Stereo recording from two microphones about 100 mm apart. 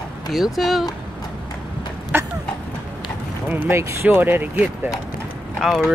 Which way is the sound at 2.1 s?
20° right (ahead or behind).